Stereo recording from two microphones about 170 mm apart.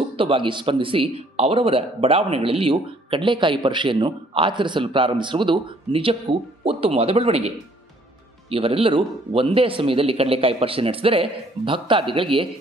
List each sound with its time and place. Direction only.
0.2 s speech: 30° right (ahead or behind)